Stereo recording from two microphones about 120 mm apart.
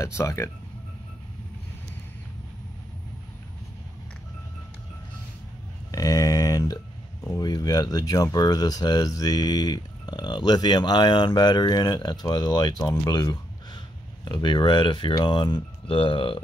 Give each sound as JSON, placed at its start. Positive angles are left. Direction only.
{"t": 0.0, "sound": "speech", "side_deg": 25}
{"t": 5.9, "sound": "a sound", "side_deg": 30}
{"t": 7.3, "sound": "speech", "side_deg": 35}